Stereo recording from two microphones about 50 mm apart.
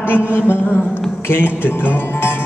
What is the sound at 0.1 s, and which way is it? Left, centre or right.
Speech, left.